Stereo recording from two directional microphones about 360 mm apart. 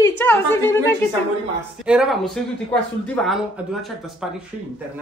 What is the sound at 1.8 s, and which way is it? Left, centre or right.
Speech, centre.